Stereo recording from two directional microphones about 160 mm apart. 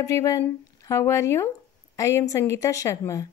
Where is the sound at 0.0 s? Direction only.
20° left (ahead or behind).